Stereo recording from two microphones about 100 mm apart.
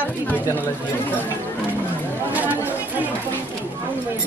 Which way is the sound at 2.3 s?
15° right (ahead or behind).